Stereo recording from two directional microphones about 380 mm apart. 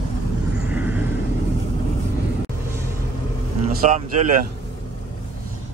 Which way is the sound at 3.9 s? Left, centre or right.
Centre.